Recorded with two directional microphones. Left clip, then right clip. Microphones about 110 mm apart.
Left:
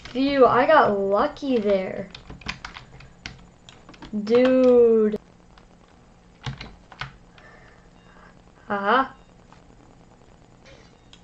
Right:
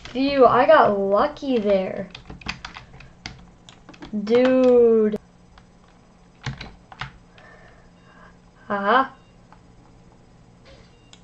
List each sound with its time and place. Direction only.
0.0 s a woman's voice: 10° left (ahead or behind)
3.9 s typing: 10° left (ahead or behind)
4.5 s speech: 15° left (ahead or behind)
6.4 s typing: 5° left (ahead or behind)
8.6 s speech: 15° left (ahead or behind)